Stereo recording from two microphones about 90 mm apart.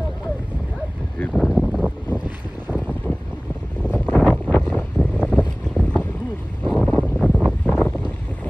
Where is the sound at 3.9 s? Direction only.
15° left (ahead or behind).